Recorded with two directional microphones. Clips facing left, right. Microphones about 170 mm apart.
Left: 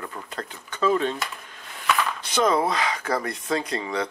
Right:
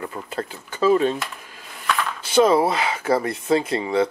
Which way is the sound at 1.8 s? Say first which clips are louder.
Even; centre (ahead or behind).